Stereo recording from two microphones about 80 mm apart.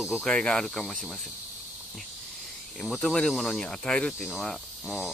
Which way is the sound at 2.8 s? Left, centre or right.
Centre.